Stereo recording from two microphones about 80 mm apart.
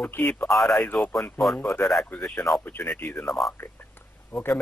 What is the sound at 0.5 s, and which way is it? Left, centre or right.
Speech, centre.